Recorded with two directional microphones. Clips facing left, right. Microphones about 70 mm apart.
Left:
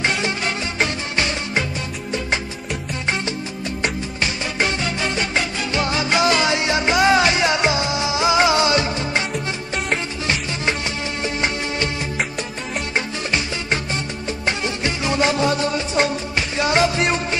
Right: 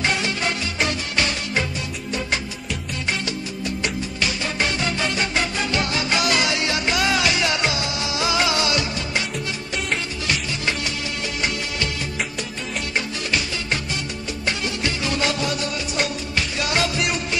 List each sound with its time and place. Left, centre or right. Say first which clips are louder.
0.7 s music: left 2 dB; left
5.3 s music: left 1 dB; left
10.2 s music: left 2 dB; left
12.9 s music: left 2 dB; left